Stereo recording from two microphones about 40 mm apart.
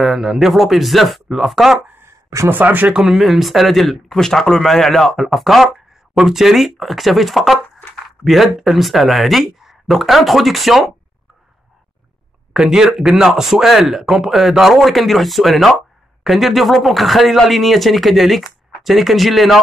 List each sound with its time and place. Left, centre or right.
0.0 s speech: centre
2.5 s speech: right
3.1 s speech: centre
4.2 s speech: centre
12.5 s speech: centre